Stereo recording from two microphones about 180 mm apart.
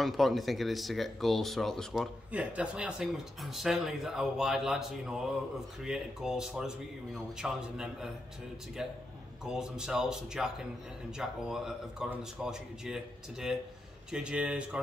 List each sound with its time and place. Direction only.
0.0 s speech: centre (ahead or behind)
9.4 s speech: 5° right (ahead or behind)